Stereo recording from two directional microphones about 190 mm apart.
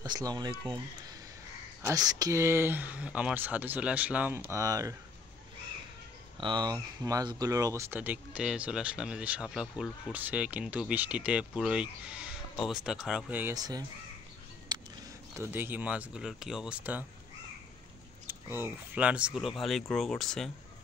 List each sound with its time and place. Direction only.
0.0 s speech: 20° right (ahead or behind)
1.8 s speech: 15° right (ahead or behind)
6.4 s speech: 25° right (ahead or behind)
14.7 s a sound: 20° right (ahead or behind)
15.3 s speech: 10° right (ahead or behind)
18.2 s speech: 10° right (ahead or behind)